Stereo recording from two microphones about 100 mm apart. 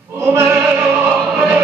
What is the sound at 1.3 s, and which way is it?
Choir, 20° right (ahead or behind).